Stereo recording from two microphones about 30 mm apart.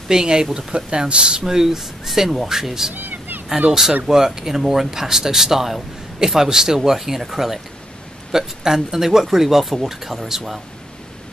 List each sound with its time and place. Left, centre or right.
0.1 s speech: right
1.4 s speech: centre
2.9 s a sound: right
4.1 s speech: centre